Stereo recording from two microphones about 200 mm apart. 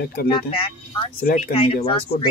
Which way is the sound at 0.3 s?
25° left (ahead or behind).